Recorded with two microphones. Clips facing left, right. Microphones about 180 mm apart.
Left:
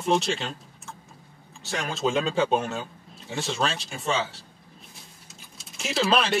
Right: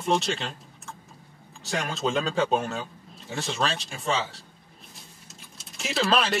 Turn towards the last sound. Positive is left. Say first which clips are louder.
# left 1 dB
turn(degrees=0)  # may be behind; listen again after turning